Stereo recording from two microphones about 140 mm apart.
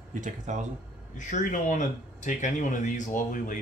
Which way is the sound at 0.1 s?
60° right (ahead or behind).